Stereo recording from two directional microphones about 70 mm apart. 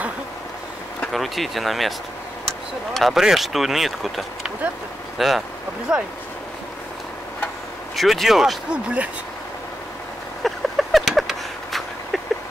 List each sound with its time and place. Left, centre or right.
1.1 s speech: centre
7.9 s speech: centre
8.6 s speech: centre
10.4 s a sound: centre